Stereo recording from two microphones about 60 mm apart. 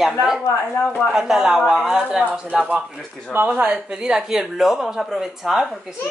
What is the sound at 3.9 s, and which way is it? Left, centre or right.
Speech, centre.